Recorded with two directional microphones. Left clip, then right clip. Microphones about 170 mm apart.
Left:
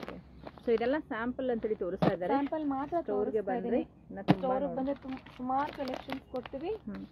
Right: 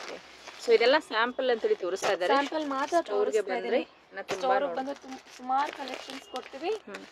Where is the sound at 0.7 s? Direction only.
20° right (ahead or behind).